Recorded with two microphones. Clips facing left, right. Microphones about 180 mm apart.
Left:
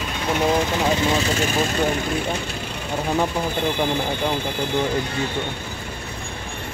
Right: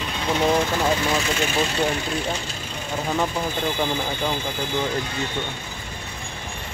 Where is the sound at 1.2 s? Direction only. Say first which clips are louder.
Left 2 dB; 40° left (ahead or behind).